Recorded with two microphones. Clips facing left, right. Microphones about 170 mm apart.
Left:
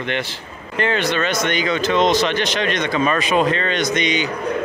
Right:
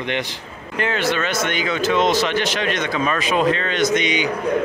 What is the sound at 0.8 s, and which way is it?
Speech, 5° right (ahead or behind).